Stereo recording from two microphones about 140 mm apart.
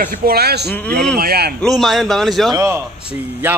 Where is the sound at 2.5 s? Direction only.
20° right (ahead or behind).